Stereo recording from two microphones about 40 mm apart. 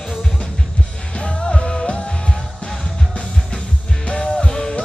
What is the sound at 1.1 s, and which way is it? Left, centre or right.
Music, left.